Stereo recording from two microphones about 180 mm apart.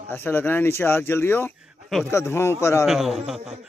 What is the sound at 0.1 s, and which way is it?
Speech, 10° left (ahead or behind).